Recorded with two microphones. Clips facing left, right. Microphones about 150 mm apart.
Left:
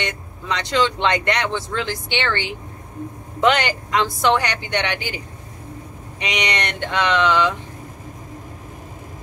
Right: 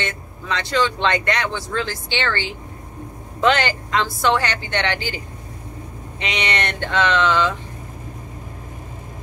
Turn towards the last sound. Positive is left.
turn(degrees=15)  # may be behind; listen again after turning